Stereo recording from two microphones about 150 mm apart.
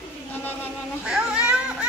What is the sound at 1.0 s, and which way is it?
Children playing, 5° right (ahead or behind).